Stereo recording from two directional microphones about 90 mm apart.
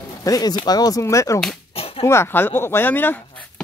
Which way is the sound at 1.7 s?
90° left.